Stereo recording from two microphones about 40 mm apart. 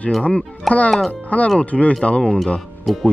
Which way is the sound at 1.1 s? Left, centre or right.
Left.